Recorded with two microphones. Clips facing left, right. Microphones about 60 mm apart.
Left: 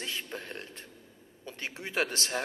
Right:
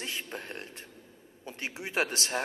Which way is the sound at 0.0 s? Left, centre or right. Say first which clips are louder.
Even; centre.